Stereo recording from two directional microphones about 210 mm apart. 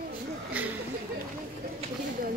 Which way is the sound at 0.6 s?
5° right (ahead or behind).